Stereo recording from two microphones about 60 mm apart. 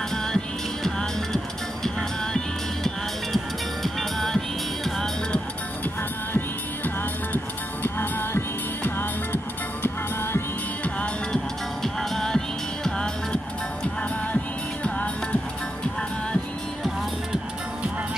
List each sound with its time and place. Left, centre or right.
0.1 s music: centre
7.8 s music: left
10.8 s music: left
11.8 s music: centre
14.3 s music: left